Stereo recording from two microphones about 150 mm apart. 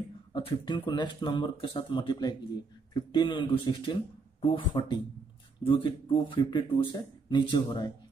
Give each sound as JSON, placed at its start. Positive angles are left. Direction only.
{"t": 0.3, "sound": "speech", "side_deg": 40}